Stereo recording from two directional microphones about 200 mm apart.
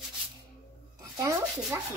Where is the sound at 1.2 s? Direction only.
15° right (ahead or behind).